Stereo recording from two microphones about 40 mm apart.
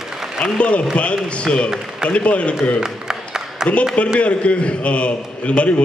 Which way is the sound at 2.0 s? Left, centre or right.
Left.